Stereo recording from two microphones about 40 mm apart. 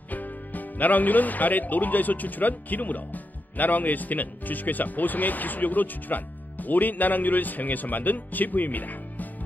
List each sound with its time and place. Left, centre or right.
0.1 s speech: left